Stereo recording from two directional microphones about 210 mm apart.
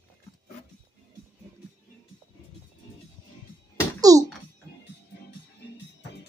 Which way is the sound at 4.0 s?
15° right (ahead or behind).